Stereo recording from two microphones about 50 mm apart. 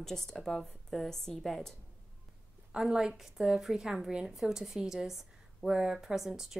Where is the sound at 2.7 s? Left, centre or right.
Centre.